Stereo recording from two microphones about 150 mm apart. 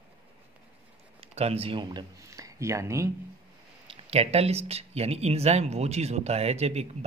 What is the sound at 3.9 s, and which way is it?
Speech, 40° right (ahead or behind).